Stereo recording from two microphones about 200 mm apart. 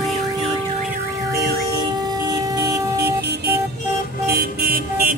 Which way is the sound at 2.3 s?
20° right (ahead or behind).